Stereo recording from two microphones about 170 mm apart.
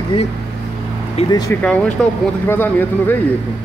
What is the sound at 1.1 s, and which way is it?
Speech, 25° left (ahead or behind).